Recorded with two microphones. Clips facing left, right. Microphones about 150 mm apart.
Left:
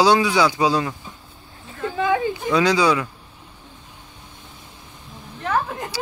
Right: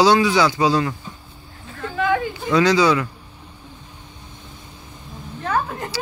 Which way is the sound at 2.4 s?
10° left (ahead or behind).